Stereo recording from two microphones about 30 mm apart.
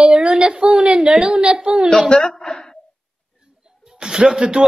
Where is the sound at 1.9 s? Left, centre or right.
Left.